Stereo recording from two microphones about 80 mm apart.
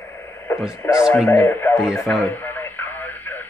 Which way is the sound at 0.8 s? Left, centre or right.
Left.